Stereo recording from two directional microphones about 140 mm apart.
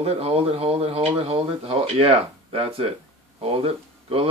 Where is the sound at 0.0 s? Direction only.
45° right (ahead or behind).